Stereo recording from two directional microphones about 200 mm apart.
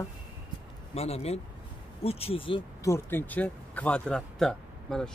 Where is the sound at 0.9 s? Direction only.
30° left (ahead or behind).